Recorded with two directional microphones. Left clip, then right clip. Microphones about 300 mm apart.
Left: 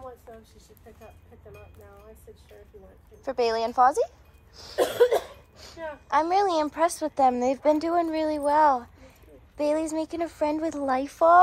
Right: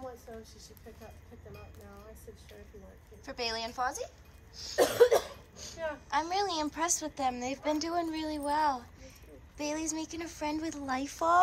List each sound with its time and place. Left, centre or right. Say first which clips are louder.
3.3 s a woman's voice: left 11 dB; centre
4.8 s cough: left 2 dB; centre
6.0 s a woman's voice: left 10 dB; centre